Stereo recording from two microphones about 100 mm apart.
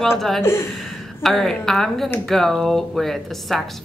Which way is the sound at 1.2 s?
5° left (ahead or behind).